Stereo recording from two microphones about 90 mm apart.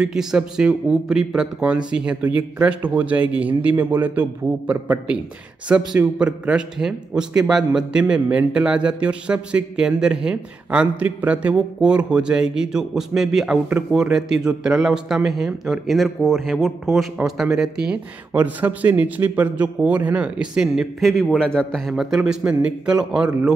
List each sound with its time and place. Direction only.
0.0 s a man's voice: 5° right (ahead or behind)